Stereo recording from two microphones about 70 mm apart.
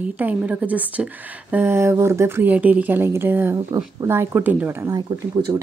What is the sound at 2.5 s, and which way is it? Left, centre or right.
A woman's voice, right.